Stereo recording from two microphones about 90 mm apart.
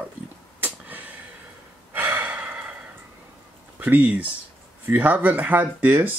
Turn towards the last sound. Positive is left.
turn(degrees=-20)  # may be behind; listen again after turning